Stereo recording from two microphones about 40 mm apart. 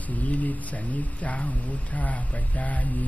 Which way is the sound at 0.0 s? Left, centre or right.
Left.